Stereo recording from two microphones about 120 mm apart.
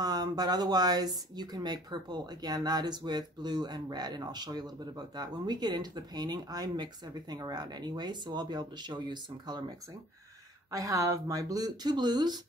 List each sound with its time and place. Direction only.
0.0 s speech: 35° right (ahead or behind)